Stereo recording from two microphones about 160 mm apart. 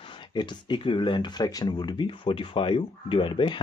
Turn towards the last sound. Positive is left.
turn(degrees=30)  # may be behind; listen again after turning